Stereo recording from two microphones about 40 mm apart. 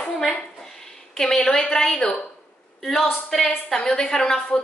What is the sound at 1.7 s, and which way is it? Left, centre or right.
Speech, centre.